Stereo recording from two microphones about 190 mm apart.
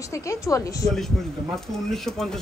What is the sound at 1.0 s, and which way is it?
A man's voice, centre (ahead or behind).